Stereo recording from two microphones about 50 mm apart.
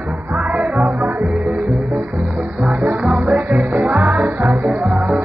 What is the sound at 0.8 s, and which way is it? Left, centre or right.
Music, right.